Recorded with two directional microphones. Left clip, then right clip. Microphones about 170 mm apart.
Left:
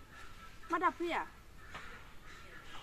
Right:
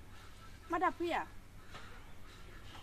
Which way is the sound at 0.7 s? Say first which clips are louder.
Left 1 dB; 25° right (ahead or behind).